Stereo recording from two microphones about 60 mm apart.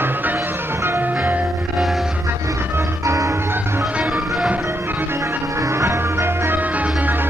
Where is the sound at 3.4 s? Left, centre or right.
Right.